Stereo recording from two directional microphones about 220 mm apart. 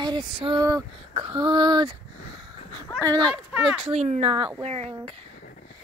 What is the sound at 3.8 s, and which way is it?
Speech, 30° right (ahead or behind).